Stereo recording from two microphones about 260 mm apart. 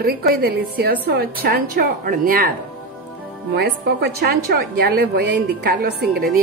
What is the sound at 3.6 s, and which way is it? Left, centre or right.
A woman's voice, right.